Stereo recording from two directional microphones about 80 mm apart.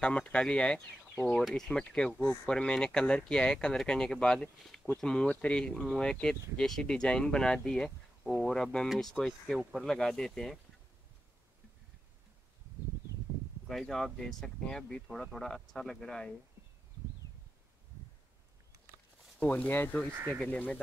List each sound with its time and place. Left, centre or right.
0.0 s speech: centre
8.2 s speech: centre
13.7 s speech: centre
19.4 s speech: left